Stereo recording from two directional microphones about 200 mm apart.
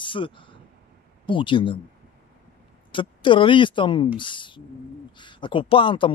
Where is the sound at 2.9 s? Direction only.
25° left (ahead or behind).